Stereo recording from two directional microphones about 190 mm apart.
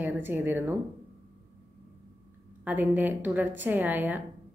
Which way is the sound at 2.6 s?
10° right (ahead or behind).